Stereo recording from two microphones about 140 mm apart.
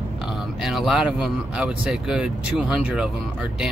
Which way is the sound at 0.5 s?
Centre (ahead or behind).